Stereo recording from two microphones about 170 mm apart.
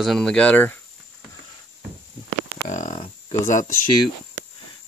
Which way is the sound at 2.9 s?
35° left (ahead or behind).